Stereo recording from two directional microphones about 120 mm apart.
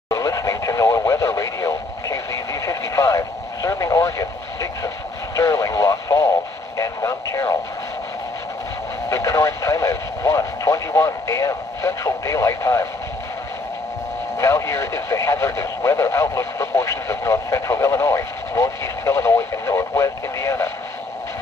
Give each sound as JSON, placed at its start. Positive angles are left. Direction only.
{"t": 0.1, "sound": "radio", "side_deg": 25}
{"t": 9.1, "sound": "radio", "side_deg": 25}
{"t": 14.4, "sound": "radio", "side_deg": 25}